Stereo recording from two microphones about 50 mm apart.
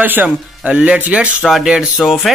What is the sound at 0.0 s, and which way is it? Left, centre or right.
Speech, right.